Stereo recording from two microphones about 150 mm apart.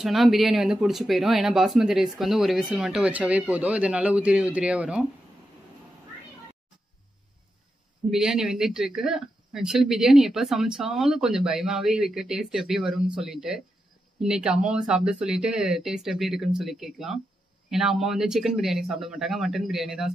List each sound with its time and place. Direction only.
0.0 s speech: centre (ahead or behind)
8.1 s speech: 5° right (ahead or behind)